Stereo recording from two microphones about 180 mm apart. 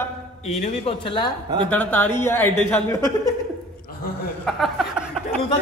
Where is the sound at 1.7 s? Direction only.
10° left (ahead or behind).